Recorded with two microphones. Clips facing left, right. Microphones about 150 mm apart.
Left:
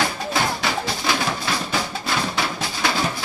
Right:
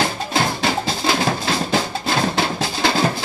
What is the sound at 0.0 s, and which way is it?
Music, 30° right (ahead or behind).